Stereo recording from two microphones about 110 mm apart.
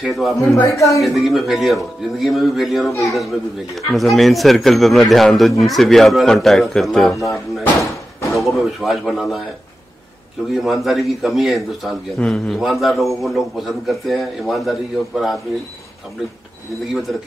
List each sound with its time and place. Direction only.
0.0 s a man's voice: centre (ahead or behind)
0.7 s a woman's voice: 30° left (ahead or behind)
1.0 s a man's voice: centre (ahead or behind)
10.5 s a man's voice: centre (ahead or behind)